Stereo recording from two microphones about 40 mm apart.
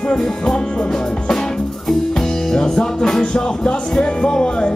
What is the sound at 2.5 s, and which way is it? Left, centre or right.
Music, centre.